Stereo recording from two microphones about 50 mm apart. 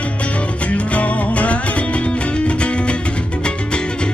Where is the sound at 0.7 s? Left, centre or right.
Left.